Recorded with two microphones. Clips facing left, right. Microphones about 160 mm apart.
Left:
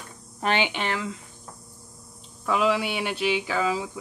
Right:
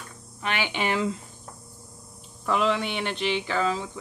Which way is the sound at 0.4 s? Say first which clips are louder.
Left 5 dB; 45° left (ahead or behind).